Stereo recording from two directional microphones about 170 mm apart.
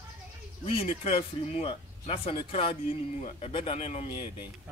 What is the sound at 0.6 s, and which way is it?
Speech, 35° left (ahead or behind).